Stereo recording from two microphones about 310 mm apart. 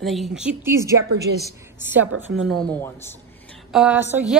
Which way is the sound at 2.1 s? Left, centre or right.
Right.